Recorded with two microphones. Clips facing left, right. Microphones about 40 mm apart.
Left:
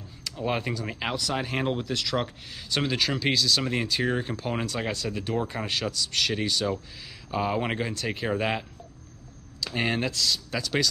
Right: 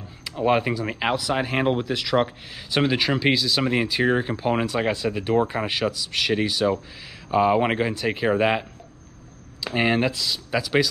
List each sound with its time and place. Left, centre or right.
0.2 s speech: right